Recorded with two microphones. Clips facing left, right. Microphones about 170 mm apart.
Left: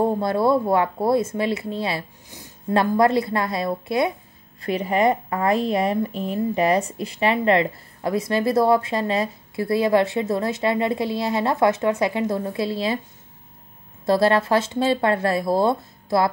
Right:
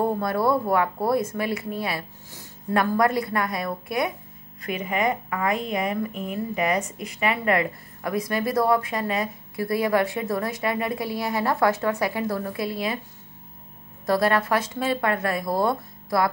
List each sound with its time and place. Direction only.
0.0 s a woman's voice: 25° left (ahead or behind)
14.0 s a woman's voice: 25° left (ahead or behind)